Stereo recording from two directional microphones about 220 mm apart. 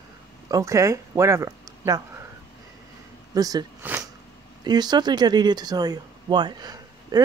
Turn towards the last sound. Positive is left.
turn(degrees=-20)  # may be behind; listen again after turning